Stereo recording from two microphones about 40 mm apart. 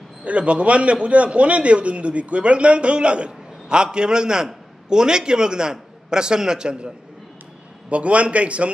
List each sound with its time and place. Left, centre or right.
0.2 s a man's voice: right
7.9 s a man's voice: right